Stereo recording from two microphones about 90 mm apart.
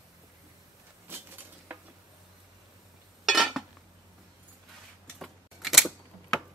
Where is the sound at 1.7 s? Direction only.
15° right (ahead or behind).